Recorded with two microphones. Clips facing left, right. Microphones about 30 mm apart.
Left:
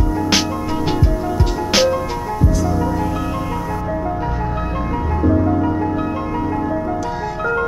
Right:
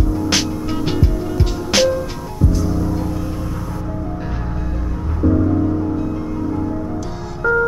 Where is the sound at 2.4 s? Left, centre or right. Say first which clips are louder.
Even; left.